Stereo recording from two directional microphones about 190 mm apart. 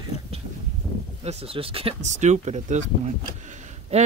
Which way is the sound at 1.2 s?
35° right (ahead or behind).